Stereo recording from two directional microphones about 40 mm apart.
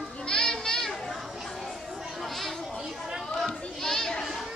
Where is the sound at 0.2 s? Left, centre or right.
Left; by 1.7 s centre.